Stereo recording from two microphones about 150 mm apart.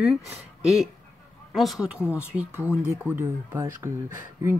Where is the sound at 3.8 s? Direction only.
20° right (ahead or behind).